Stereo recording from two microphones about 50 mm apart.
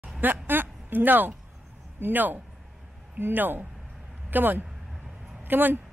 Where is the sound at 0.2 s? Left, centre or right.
Right.